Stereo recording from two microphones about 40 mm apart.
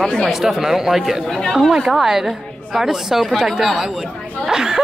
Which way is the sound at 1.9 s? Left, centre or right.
Centre.